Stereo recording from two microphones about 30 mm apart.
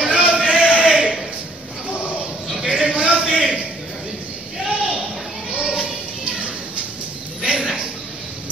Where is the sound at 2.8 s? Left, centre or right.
Right.